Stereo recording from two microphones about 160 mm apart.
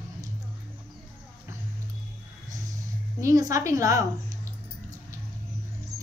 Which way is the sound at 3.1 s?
20° right (ahead or behind).